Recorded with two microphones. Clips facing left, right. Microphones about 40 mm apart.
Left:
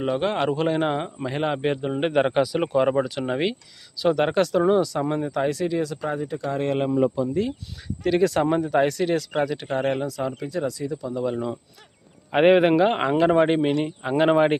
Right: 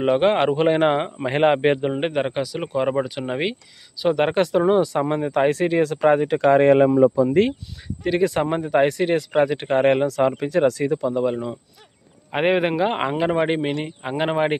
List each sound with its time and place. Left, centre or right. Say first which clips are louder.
0.0 s speech: right 6 dB; right
1.9 s a man's voice: right 1 dB; centre
2.1 s speech: left 3 dB; centre
4.3 s speech: right 2 dB; right
8.0 s speech: even; centre; by 11.2 s right
12.3 s speech: left 3 dB; centre